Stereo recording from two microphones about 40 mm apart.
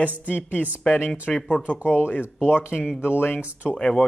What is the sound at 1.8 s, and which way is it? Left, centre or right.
Speech, left.